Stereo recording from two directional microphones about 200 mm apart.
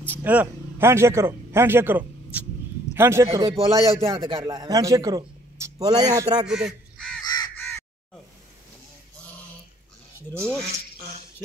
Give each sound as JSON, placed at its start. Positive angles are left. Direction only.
{"t": 0.2, "sound": "a man's voice", "side_deg": -10}
{"t": 6.4, "sound": "crow", "side_deg": -5}
{"t": 7.2, "sound": "crow", "side_deg": 20}
{"t": 10.4, "sound": "coin", "side_deg": 0}